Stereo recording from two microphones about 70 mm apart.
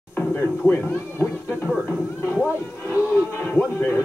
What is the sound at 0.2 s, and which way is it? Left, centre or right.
Speech, left.